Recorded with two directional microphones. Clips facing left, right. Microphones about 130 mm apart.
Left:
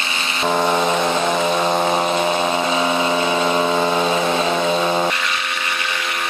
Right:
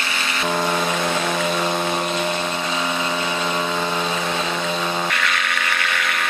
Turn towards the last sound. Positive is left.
turn(degrees=25)  # may be behind; listen again after turning